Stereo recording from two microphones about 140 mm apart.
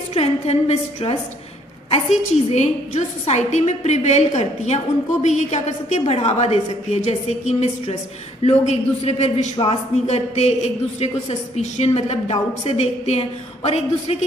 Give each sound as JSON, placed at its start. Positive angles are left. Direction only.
{"t": 0.1, "sound": "a woman's voice", "side_deg": 50}